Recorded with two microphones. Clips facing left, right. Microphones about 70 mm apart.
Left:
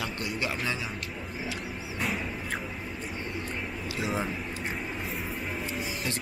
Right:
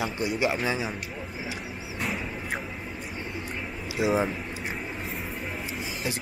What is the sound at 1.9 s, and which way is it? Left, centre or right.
Music, centre.